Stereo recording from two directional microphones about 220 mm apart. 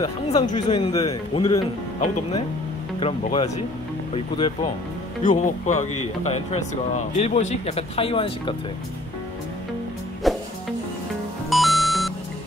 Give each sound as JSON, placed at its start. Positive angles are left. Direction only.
{"t": 0.0, "sound": "speech", "side_deg": 20}
{"t": 3.0, "sound": "speech", "side_deg": 25}
{"t": 5.2, "sound": "speech", "side_deg": 35}
{"t": 10.2, "sound": "music", "side_deg": 0}
{"t": 11.5, "sound": "music", "side_deg": 0}